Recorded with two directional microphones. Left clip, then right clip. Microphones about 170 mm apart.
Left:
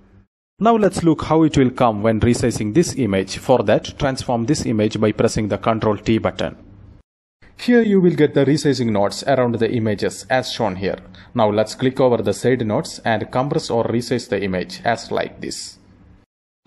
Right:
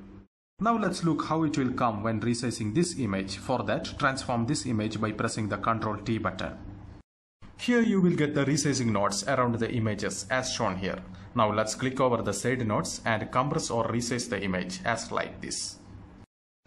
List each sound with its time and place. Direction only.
0.6 s speech: 40° left (ahead or behind)
7.5 s speech: 30° left (ahead or behind)